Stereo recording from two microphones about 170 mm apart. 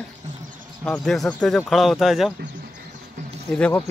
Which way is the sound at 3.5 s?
5° left (ahead or behind).